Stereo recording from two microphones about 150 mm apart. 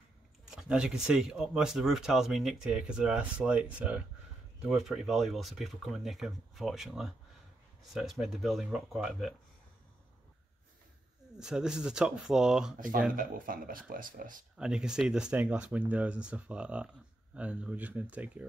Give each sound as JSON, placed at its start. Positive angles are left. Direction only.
{"t": 0.5, "sound": "speech", "side_deg": -5}
{"t": 11.3, "sound": "speech", "side_deg": -5}
{"t": 13.1, "sound": "speech", "side_deg": -70}
{"t": 14.6, "sound": "speech", "side_deg": -5}